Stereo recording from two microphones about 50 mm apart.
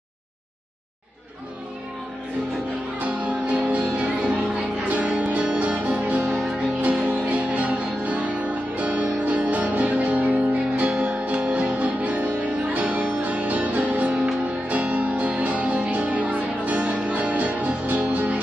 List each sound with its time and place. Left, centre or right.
3.0 s music: right